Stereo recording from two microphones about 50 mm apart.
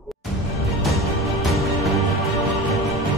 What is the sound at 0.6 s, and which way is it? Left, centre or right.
Music, centre.